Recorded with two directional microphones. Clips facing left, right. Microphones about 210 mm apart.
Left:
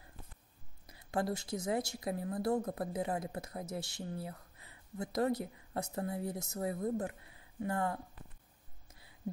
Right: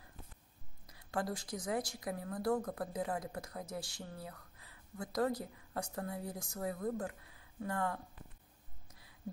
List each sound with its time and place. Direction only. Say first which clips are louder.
0.8 s a woman's voice: left 3 dB; 25° left (ahead or behind)